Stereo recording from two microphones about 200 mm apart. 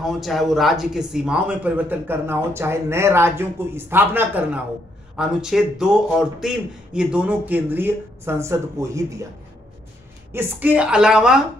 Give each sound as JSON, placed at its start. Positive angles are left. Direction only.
{"t": 0.0, "sound": "a man's voice", "side_deg": 0}
{"t": 10.3, "sound": "a man's voice", "side_deg": -10}